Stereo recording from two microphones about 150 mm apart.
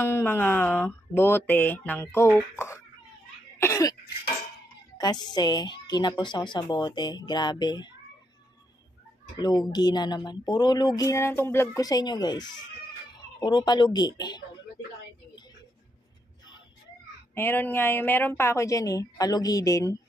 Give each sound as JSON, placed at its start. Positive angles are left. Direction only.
{"t": 0.0, "sound": "a sound", "side_deg": 15}
{"t": 3.5, "sound": "cough", "side_deg": 20}
{"t": 4.9, "sound": "speech", "side_deg": 30}
{"t": 9.4, "sound": "speech", "side_deg": 30}
{"t": 17.3, "sound": "speech", "side_deg": 15}